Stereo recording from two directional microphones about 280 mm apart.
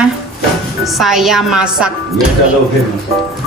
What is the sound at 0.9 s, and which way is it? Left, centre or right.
Speech, centre.